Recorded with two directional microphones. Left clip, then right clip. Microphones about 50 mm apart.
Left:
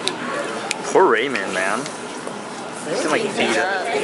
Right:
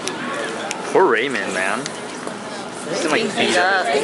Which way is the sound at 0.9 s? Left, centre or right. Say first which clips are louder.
Even; centre.